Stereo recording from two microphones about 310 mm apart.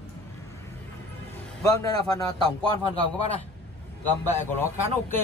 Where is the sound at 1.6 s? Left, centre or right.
Centre.